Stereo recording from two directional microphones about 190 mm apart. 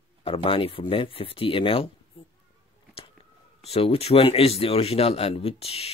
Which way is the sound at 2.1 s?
30° left (ahead or behind).